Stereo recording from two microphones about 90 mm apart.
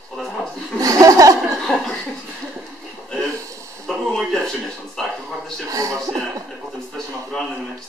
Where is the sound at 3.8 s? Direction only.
Centre (ahead or behind).